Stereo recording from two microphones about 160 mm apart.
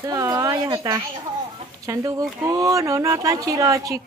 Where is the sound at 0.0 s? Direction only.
20° right (ahead or behind).